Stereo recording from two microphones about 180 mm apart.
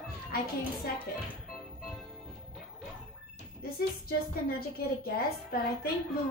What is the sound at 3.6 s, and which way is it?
A woman's voice, 55° left (ahead or behind).